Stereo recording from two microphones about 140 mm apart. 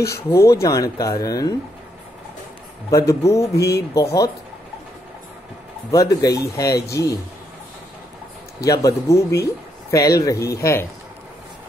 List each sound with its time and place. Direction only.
0.0 s speech: 20° left (ahead or behind)
3.1 s speech: 20° left (ahead or behind)
5.9 s speech: 25° left (ahead or behind)
8.6 s speech: 25° left (ahead or behind)